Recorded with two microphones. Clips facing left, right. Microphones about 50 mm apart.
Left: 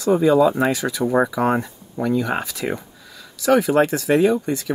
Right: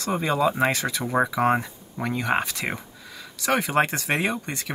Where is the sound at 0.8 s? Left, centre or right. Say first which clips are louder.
Left 5 dB; centre.